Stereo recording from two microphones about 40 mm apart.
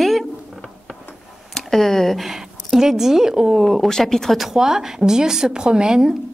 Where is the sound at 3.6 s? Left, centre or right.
Centre.